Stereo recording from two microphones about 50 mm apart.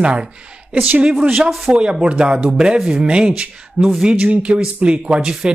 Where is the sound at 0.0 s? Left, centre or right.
Right.